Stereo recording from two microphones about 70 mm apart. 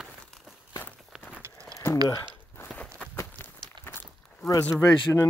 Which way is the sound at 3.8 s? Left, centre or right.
Right.